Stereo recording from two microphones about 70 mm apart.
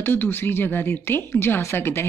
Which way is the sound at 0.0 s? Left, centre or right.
Left.